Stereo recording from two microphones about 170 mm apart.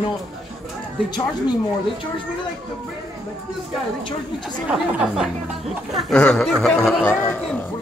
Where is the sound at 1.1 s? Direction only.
25° left (ahead or behind).